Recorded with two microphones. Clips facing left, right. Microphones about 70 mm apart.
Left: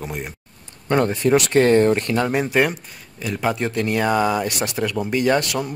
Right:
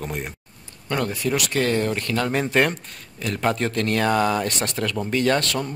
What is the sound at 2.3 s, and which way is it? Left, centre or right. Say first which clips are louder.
Speech: right 2 dB; centre.